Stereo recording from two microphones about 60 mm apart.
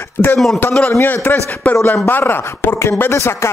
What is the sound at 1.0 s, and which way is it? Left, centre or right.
A man's voice, left.